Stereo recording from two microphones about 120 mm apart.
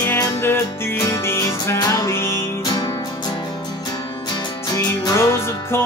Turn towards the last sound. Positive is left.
turn(degrees=20)  # may be behind; listen again after turning